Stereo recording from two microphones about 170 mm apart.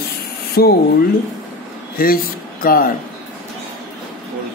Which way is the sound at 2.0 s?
60° left (ahead or behind).